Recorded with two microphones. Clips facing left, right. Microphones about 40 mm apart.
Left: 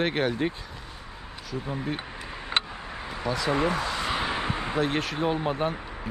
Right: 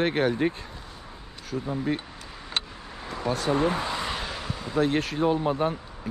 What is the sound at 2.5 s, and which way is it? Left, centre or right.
Vehicle, left.